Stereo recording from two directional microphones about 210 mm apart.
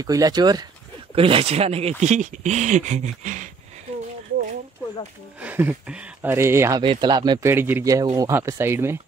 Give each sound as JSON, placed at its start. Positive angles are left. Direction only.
{"t": 0.0, "sound": "speech", "side_deg": -15}
{"t": 5.4, "sound": "speech", "side_deg": -10}